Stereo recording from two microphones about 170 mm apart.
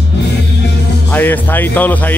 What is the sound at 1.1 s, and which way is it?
Music, 10° left (ahead or behind).